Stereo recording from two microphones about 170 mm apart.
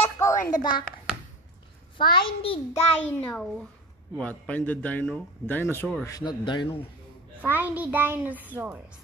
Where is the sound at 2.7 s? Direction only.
10° left (ahead or behind).